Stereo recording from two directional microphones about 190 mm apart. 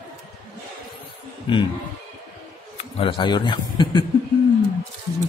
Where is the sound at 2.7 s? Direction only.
25° left (ahead or behind).